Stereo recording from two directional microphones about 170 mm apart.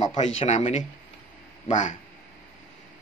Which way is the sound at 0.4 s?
40° left (ahead or behind).